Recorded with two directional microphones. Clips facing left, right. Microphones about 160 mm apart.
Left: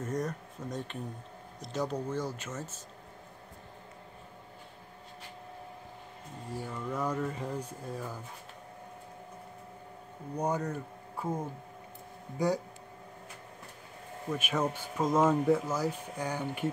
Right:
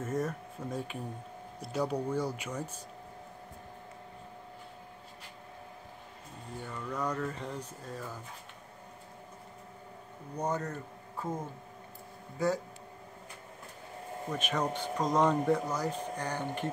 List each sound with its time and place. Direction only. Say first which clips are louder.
0.0 s speech: right 1 dB; 5° right (ahead or behind)
6.5 s speech: left 2 dB; 10° left (ahead or behind)
10.3 s speech: left 2 dB; 10° left (ahead or behind)
14.3 s speech: left 1 dB; 5° left (ahead or behind)